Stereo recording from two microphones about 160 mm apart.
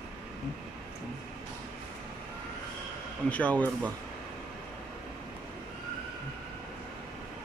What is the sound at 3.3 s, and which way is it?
Speech, 10° left (ahead or behind).